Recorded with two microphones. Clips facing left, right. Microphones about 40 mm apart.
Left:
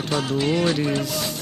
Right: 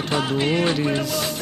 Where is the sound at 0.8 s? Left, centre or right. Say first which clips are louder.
Right 1 dB; centre.